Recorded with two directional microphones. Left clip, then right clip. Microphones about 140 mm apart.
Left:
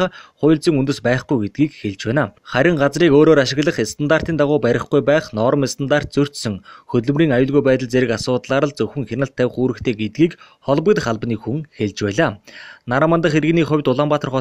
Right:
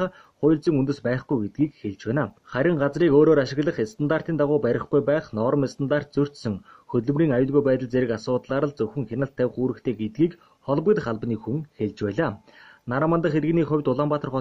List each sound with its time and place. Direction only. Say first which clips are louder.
0.0 s speech: left 6 dB; 30° left (ahead or behind)